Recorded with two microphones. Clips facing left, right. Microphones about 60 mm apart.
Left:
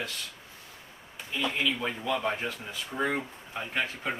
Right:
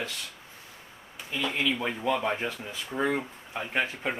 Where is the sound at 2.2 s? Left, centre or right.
Centre.